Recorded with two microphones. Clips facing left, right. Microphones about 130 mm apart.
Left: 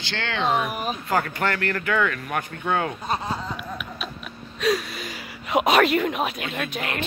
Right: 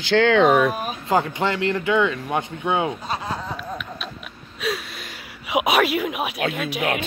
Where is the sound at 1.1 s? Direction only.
20° right (ahead or behind).